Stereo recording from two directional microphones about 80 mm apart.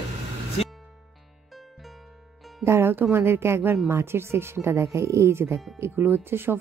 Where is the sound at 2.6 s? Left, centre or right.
Right.